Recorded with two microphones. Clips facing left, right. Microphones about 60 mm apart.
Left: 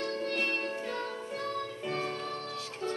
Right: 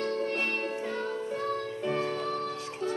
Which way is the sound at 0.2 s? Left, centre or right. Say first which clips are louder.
Right 2 dB; centre.